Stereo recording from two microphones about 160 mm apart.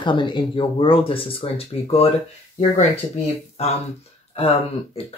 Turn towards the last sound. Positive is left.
turn(degrees=40)  # may be behind; listen again after turning